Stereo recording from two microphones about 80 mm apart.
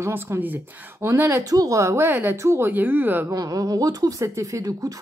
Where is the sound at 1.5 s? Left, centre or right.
Right.